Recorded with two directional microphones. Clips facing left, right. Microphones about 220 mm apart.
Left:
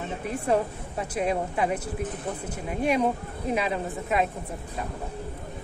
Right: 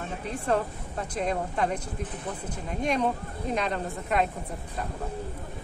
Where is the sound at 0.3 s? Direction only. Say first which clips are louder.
Left 2 dB; 10° left (ahead or behind).